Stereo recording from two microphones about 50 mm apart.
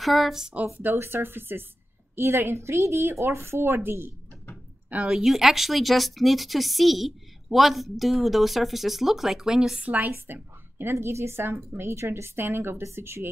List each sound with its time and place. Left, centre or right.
0.0 s speech: centre
0.9 s a woman's voice: right
5.0 s speech: centre
9.8 s a woman's voice: right
10.1 s a woman's voice: right